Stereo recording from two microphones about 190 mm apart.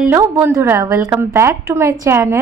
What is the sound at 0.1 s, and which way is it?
Speech, 15° right (ahead or behind).